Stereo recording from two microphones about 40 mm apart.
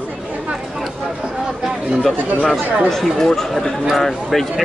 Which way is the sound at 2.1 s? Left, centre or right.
Right.